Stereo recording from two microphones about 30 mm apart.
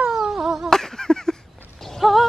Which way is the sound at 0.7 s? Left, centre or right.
Centre.